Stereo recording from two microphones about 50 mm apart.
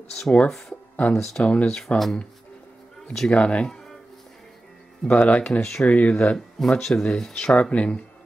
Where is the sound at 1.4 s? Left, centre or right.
Left.